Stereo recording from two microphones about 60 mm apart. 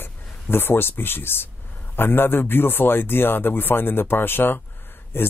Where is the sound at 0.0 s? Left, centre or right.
Left.